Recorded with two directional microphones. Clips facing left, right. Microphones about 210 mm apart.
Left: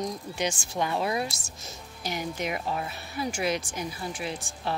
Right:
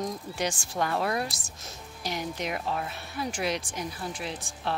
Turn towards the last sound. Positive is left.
turn(degrees=0)  # may be behind; listen again after turning